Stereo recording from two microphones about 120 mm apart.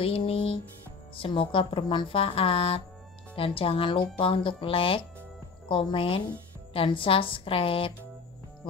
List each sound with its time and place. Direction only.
0.0 s music: 50° left (ahead or behind)
1.1 s a woman's voice: 45° left (ahead or behind)